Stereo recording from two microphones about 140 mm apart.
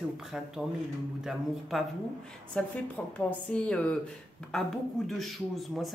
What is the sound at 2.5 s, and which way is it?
A woman's voice, 10° left (ahead or behind).